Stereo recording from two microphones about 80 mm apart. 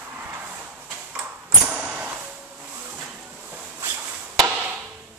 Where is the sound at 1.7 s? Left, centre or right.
Centre.